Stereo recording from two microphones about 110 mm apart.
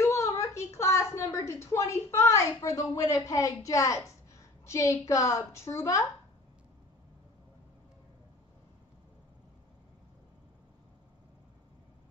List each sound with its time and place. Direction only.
0.0 s a woman's voice: 25° left (ahead or behind)